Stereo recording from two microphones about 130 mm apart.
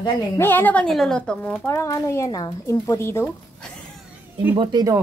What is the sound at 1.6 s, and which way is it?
Speech, 20° left (ahead or behind).